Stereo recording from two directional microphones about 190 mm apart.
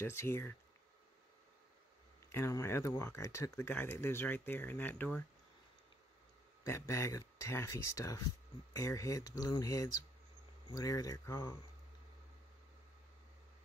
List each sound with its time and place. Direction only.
0.0 s speech: 15° left (ahead or behind)
2.2 s speech: 15° left (ahead or behind)
6.6 s speech: 15° left (ahead or behind)